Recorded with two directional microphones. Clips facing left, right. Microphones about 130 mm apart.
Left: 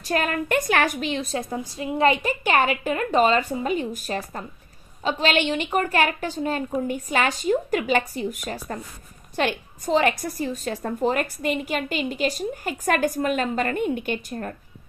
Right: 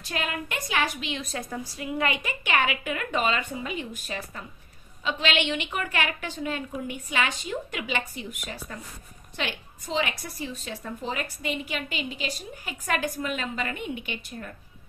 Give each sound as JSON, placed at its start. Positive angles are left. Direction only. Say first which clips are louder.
{"t": 0.0, "sound": "a woman's voice", "louder": "left 7 dB", "side_deg": 45}